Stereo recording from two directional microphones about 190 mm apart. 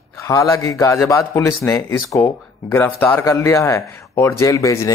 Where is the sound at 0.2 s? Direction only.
15° left (ahead or behind).